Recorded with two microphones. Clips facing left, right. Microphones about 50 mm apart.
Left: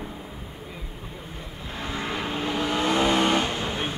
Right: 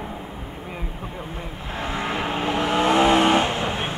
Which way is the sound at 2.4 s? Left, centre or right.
Right.